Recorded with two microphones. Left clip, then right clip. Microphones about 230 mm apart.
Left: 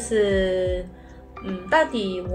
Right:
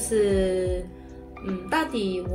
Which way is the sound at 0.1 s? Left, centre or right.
Centre.